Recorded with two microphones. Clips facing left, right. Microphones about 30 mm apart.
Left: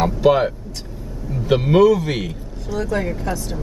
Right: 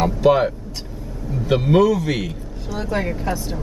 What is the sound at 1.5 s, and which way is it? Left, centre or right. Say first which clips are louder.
Speech: left 2 dB; centre.